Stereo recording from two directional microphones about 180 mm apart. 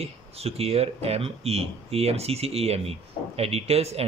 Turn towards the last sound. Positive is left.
turn(degrees=-35)  # may be behind; listen again after turning